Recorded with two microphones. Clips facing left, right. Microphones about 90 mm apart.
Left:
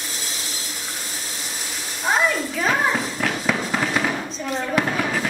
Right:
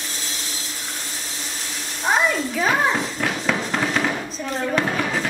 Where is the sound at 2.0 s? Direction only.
Centre (ahead or behind).